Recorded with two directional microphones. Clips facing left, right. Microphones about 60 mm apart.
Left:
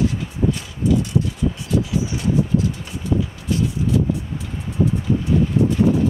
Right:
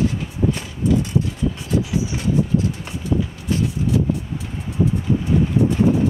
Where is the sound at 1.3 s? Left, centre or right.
Right.